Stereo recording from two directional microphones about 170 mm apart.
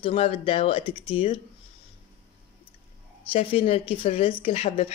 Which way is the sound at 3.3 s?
35° left (ahead or behind).